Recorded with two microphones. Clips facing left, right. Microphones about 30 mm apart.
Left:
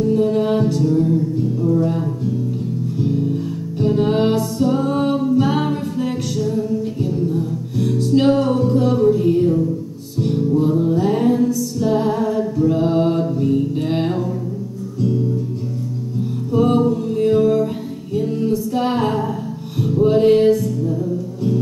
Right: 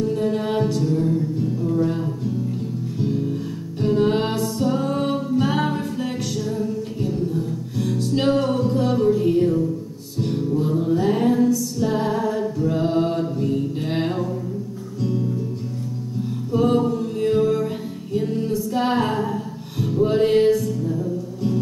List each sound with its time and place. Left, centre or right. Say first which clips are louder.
0.0 s music: left 5 dB; centre
3.0 s music: left 3 dB; centre
16.5 s music: left 3 dB; centre